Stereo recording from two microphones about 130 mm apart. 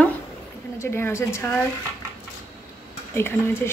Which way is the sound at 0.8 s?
20° left (ahead or behind).